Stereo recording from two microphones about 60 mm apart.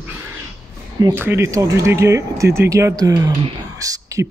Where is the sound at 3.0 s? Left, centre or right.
Right.